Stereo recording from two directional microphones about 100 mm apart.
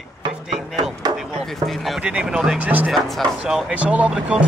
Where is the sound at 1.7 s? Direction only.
Centre (ahead or behind); by 2.9 s 15° right (ahead or behind).